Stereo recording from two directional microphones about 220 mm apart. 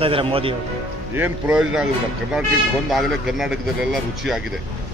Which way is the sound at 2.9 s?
Centre (ahead or behind).